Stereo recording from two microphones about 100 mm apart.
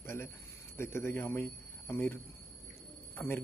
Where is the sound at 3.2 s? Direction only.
20° left (ahead or behind).